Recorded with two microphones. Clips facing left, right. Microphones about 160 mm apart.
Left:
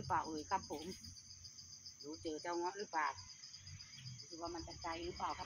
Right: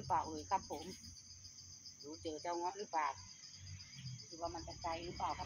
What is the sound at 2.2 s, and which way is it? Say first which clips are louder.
Speech: even; 25° right (ahead or behind).